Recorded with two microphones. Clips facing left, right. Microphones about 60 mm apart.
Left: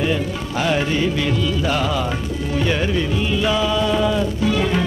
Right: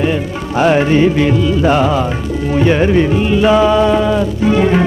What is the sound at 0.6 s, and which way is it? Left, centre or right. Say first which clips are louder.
Music: right 9 dB; right.